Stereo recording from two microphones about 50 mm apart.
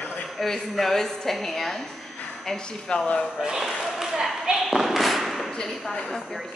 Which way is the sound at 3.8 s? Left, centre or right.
Centre.